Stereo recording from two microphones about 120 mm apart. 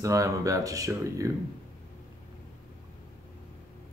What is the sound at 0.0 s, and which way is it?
Speech, 25° right (ahead or behind).